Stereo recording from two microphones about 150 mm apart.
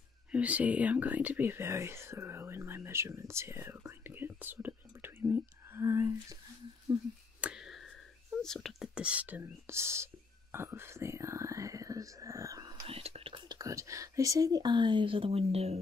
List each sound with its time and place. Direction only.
0.3 s speech: 10° right (ahead or behind)
7.3 s a sound: 5° right (ahead or behind)
8.4 s speech: 5° left (ahead or behind); by 10.0 s 15° right (ahead or behind)
10.5 s whispering: 15° right (ahead or behind)
12.8 s whispering: 40° right (ahead or behind)
13.6 s speech: 20° right (ahead or behind); by 15.8 s 45° right (ahead or behind)